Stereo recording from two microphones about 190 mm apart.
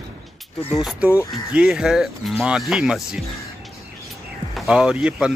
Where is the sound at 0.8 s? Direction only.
5° right (ahead or behind).